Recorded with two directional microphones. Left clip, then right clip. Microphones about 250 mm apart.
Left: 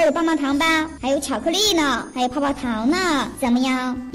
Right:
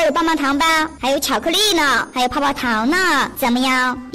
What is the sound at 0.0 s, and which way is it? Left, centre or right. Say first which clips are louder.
A woman's voice: right 2 dB; right.